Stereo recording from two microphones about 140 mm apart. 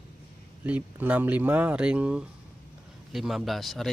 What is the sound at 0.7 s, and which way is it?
Speech, 10° right (ahead or behind).